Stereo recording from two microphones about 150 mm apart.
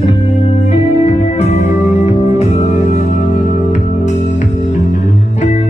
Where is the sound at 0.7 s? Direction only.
50° left (ahead or behind).